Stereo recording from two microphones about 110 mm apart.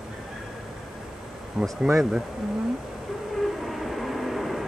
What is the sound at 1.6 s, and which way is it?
Speech, 5° right (ahead or behind).